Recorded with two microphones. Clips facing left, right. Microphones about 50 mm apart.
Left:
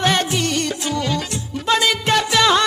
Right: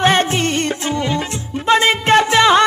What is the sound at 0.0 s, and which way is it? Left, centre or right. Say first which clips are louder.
Music: right 4 dB; right.